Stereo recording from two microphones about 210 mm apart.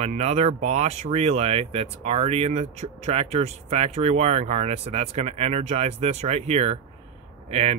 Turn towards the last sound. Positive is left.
turn(degrees=-30)  # may be behind; listen again after turning